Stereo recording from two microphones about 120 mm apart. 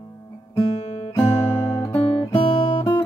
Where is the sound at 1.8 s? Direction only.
55° left (ahead or behind).